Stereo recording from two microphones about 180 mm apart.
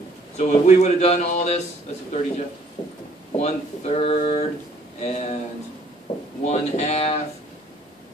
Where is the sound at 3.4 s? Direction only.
35° left (ahead or behind).